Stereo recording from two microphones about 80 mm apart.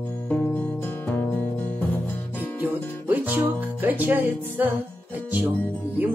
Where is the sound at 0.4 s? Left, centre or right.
Left.